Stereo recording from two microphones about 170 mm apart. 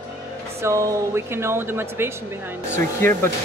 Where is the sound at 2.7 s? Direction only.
15° left (ahead or behind).